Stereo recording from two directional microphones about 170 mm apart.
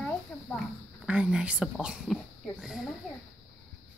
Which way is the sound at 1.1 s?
5° right (ahead or behind).